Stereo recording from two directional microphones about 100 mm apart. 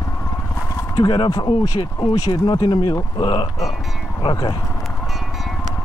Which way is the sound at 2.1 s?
45° left (ahead or behind).